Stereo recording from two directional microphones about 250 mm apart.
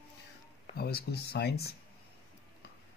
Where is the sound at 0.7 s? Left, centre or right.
Left.